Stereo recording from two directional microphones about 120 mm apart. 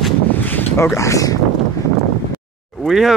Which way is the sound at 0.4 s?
15° left (ahead or behind).